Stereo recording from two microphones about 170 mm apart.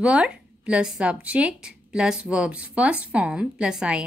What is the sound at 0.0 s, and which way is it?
Speech, 5° right (ahead or behind).